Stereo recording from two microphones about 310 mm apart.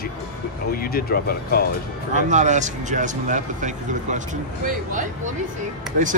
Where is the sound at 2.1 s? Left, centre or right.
Right.